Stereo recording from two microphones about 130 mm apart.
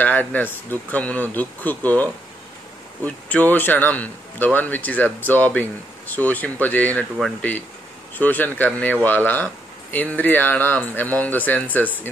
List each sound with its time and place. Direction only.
0.0 s speech: 15° left (ahead or behind)
3.1 s speech: 10° left (ahead or behind)
8.2 s speech: 15° left (ahead or behind)